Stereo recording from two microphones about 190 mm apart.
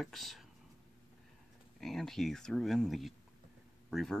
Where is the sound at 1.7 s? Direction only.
Centre (ahead or behind).